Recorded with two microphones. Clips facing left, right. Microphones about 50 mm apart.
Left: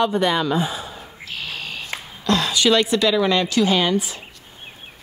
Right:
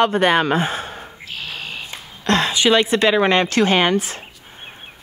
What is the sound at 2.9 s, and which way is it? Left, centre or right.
A woman's voice, right.